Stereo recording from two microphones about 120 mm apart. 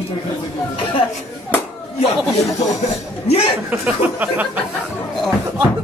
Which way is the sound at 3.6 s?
10° right (ahead or behind).